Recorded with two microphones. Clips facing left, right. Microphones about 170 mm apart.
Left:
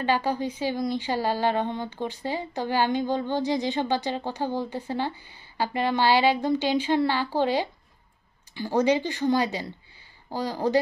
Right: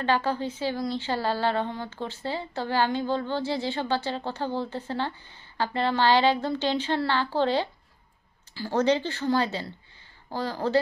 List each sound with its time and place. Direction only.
0.0 s a woman's voice: 15° left (ahead or behind)